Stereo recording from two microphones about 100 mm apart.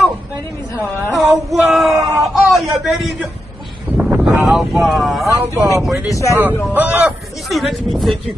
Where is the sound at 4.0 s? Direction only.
20° right (ahead or behind).